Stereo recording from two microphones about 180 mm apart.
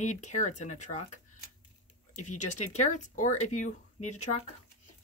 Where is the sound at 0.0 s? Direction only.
40° left (ahead or behind).